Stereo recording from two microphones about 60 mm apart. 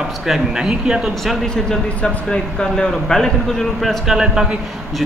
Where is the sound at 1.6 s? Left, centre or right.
Centre.